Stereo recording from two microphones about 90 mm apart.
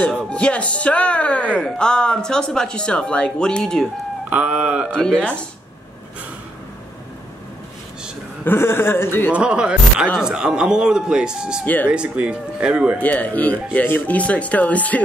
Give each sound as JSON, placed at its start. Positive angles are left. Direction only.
{"t": 0.3, "sound": "speech", "side_deg": 15}
{"t": 4.3, "sound": "speech", "side_deg": -15}
{"t": 4.9, "sound": "speech", "side_deg": 10}
{"t": 8.5, "sound": "a man's voice", "side_deg": 25}
{"t": 9.3, "sound": "speech", "side_deg": -10}
{"t": 11.6, "sound": "a man's voice", "side_deg": 20}
{"t": 11.9, "sound": "speech", "side_deg": -10}
{"t": 13.0, "sound": "speech", "side_deg": 15}